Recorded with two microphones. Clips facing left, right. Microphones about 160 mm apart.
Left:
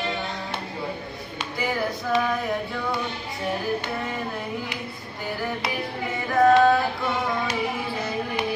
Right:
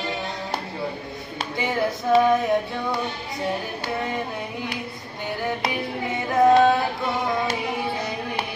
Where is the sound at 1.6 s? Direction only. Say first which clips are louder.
Right 2 dB; 20° right (ahead or behind).